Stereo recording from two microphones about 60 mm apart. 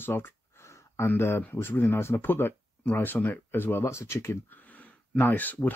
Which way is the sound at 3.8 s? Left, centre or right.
Left.